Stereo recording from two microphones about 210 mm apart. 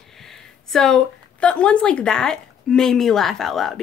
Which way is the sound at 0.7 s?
Centre (ahead or behind).